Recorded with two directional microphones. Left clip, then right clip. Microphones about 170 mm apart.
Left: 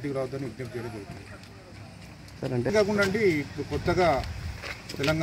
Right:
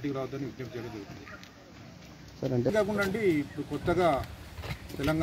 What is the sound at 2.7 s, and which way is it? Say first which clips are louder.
Speech: left 8 dB; 5° left (ahead or behind).